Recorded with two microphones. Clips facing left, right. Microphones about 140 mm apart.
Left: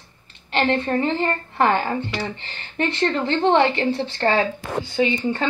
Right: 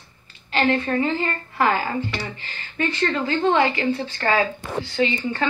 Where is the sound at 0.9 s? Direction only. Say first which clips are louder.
Left 1 dB; 30° left (ahead or behind).